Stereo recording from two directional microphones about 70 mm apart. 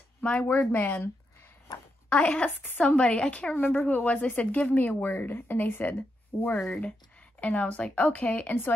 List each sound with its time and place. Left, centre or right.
0.2 s speech: centre
0.9 s a sound: left
2.0 s a woman's voice: centre
3.5 s speech: left
6.7 s speech: centre